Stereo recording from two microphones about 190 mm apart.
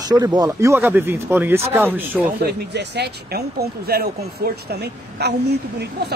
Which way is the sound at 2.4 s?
60° right (ahead or behind).